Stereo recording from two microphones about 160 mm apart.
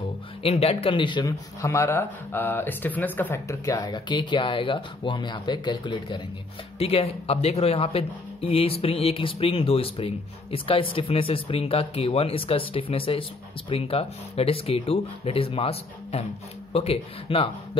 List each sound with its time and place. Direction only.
0.4 s speech: 40° left (ahead or behind)
6.8 s speech: 40° left (ahead or behind)